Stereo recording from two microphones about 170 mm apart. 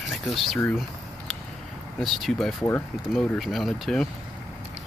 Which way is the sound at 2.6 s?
15° left (ahead or behind).